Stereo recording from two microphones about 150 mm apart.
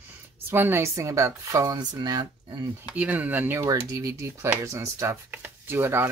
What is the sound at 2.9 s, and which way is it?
Speech, 10° right (ahead or behind).